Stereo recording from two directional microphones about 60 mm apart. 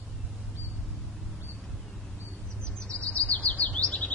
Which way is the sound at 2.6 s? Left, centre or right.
Centre.